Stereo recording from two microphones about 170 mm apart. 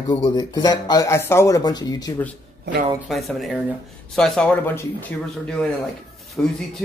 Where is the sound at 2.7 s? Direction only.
90° right.